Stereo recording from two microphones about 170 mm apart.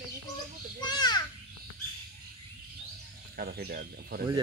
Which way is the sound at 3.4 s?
65° right (ahead or behind).